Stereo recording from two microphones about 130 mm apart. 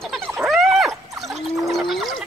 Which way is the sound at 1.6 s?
Centre (ahead or behind).